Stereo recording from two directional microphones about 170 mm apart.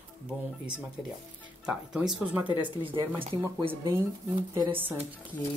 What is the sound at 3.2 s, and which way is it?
Speech, 30° right (ahead or behind).